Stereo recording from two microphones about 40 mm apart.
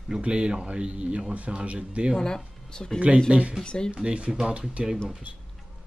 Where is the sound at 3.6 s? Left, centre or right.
Left.